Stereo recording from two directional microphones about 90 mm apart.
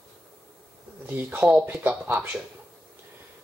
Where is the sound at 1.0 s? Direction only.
20° right (ahead or behind).